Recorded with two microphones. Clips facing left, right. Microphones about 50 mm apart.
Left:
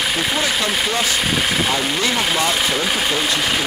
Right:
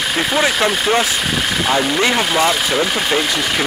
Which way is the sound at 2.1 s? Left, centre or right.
Centre.